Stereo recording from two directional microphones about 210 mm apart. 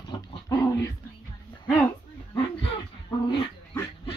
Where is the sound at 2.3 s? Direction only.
20° left (ahead or behind).